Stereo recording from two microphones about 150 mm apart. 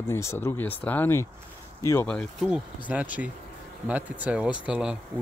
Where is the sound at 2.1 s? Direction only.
Centre (ahead or behind).